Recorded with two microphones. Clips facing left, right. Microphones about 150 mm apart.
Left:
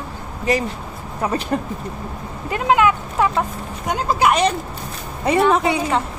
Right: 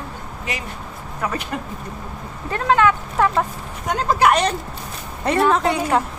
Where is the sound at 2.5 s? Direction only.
15° left (ahead or behind).